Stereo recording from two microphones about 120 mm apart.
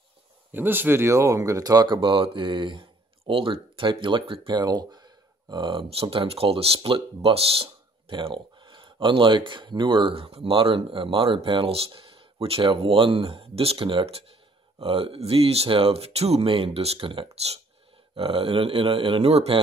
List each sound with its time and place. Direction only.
0.5 s speech: 15° right (ahead or behind); by 19.6 s 55° right (ahead or behind)